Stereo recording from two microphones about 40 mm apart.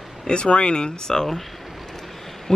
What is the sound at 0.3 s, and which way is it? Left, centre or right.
Speech, left.